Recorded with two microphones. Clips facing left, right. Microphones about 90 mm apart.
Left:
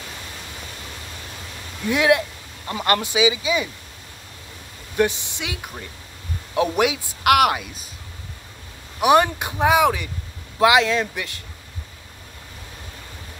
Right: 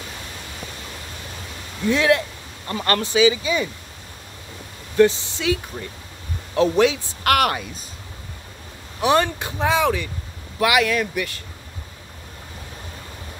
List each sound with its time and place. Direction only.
1.9 s a man's voice: 15° left (ahead or behind)
4.9 s a man's voice: 15° left (ahead or behind)
9.0 s a man's voice: 15° left (ahead or behind)